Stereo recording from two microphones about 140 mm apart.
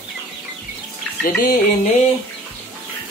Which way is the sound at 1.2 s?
90° left.